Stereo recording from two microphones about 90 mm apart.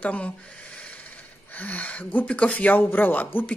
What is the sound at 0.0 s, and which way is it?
Speech, 15° left (ahead or behind).